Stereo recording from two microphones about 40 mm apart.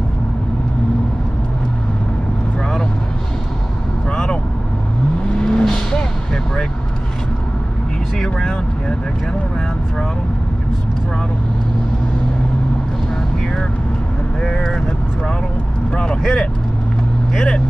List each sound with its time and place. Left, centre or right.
4.1 s vehicle: left
5.4 s vehicle: left
14.4 s vehicle: centre
16.2 s vehicle: centre